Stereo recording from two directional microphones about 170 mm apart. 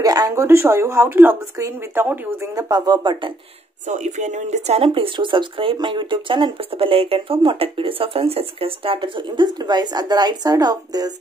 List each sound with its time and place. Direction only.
0.0 s speech: 20° right (ahead or behind)
3.9 s speech: 45° right (ahead or behind); by 11.1 s 20° right (ahead or behind)